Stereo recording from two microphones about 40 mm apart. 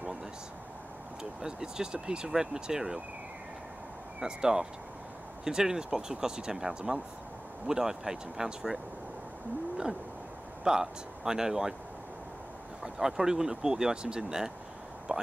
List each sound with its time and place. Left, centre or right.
1.4 s speech: centre
4.2 s speech: centre
10.6 s speech: centre
12.8 s speech: centre
15.1 s a sound: right